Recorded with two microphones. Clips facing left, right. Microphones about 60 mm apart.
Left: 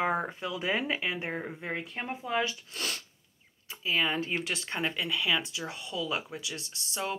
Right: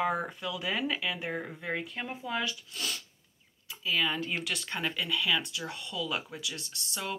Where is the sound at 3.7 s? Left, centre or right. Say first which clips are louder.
Left 1 dB; left.